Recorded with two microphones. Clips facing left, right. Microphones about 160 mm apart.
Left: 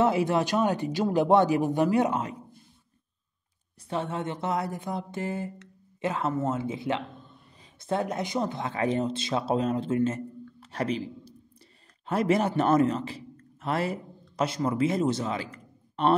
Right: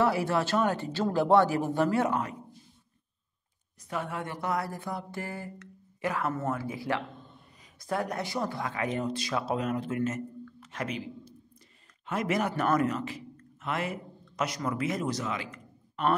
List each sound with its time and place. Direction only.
0.0 s speech: 20° left (ahead or behind)
3.9 s a man's voice: 25° left (ahead or behind)